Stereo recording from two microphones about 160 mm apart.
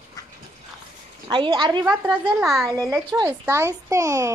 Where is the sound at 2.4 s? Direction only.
Centre (ahead or behind).